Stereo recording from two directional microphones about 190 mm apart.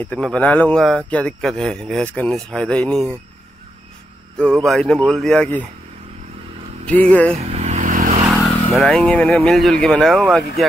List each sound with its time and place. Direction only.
0.0 s a man's voice: 5° left (ahead or behind)
4.6 s a man's voice: 5° left (ahead or behind)
6.9 s speech: 5° left (ahead or behind)
7.5 s vehicle: 35° right (ahead or behind)
8.3 s speech: centre (ahead or behind)